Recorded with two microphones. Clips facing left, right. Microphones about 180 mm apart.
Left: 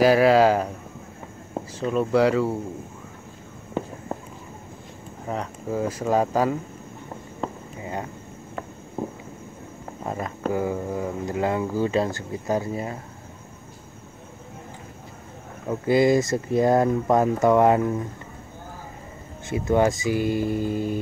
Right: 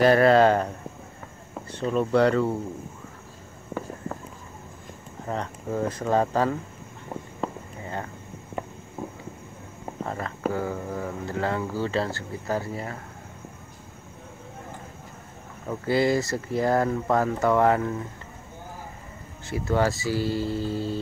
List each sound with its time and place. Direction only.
0.0 s speech: 5° left (ahead or behind)
1.8 s speech: 5° left (ahead or behind)
5.3 s speech: 5° left (ahead or behind)
7.4 s a sound: centre (ahead or behind)
7.8 s speech: 15° left (ahead or behind)
9.0 s a sound: 30° left (ahead or behind)
10.0 s speech: 15° left (ahead or behind)
15.7 s speech: 20° left (ahead or behind)
19.5 s speech: 20° left (ahead or behind)